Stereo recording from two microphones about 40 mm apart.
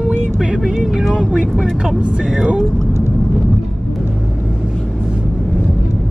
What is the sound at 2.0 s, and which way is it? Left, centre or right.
Speech, right.